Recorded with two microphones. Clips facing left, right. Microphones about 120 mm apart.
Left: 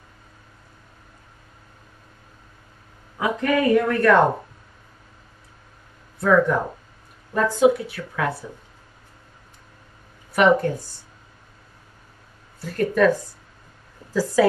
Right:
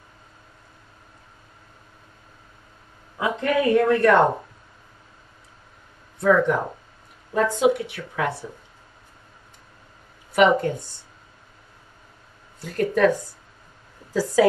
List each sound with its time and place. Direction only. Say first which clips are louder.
3.2 s speech: left 1 dB; 25° right (ahead or behind)
6.1 s speech: left 1 dB; 20° right (ahead or behind)
10.4 s speech: left 1 dB; 20° right (ahead or behind)
12.5 s speech: left 2 dB; 20° right (ahead or behind)